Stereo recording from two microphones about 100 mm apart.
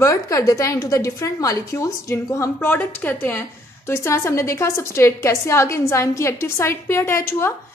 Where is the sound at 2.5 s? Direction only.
20° left (ahead or behind).